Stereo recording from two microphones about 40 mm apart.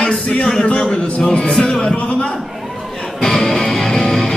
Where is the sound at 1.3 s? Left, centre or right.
Centre.